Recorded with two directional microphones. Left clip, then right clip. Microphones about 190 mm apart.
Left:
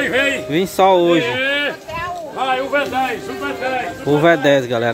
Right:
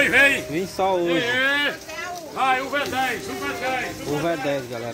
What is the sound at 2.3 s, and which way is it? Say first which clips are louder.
Speech: left 3 dB; 45° left (ahead or behind).